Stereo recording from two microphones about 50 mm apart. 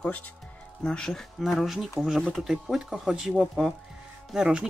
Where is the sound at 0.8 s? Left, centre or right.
Centre.